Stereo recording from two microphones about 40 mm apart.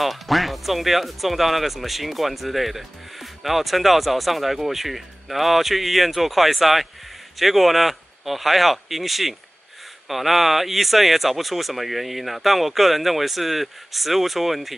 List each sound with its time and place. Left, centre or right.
0.0 s speech: centre